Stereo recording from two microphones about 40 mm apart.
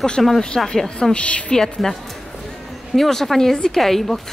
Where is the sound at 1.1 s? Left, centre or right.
Left.